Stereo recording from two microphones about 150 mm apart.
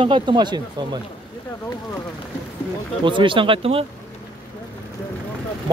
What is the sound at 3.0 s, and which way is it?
Speech, 35° right (ahead or behind).